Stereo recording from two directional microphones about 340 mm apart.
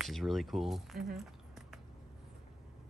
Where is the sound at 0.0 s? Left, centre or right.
Centre.